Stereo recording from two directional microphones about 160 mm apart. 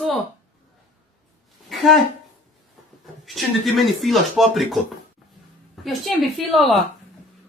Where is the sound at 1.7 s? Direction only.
Centre (ahead or behind).